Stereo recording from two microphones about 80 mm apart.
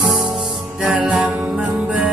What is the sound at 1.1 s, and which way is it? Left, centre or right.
Music, centre.